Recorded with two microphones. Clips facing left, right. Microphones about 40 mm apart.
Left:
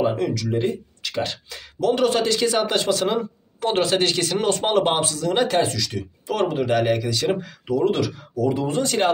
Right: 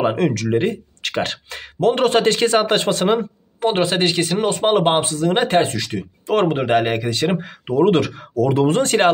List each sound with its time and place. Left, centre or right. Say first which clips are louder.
0.0 s speech: right 3 dB; right
3.5 s speech: right 2 dB; right